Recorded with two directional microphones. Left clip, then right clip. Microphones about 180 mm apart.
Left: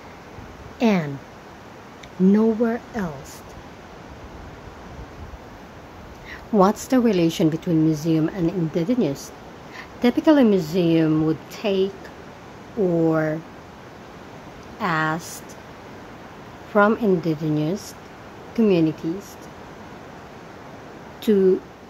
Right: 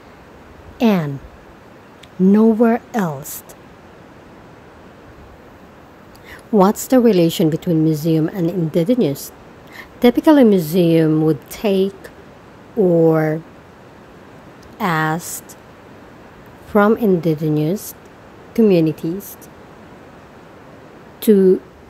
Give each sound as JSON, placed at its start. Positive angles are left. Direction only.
{"t": 0.7, "sound": "speech", "side_deg": -35}
{"t": 2.3, "sound": "speech", "side_deg": -40}
{"t": 6.6, "sound": "a woman's voice", "side_deg": -20}
{"t": 13.0, "sound": "a woman's voice", "side_deg": -25}
{"t": 14.8, "sound": "a woman's voice", "side_deg": -25}
{"t": 16.7, "sound": "a woman's voice", "side_deg": -25}
{"t": 21.3, "sound": "a woman's voice", "side_deg": -25}